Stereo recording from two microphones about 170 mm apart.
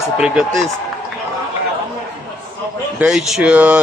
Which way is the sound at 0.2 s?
5° right (ahead or behind).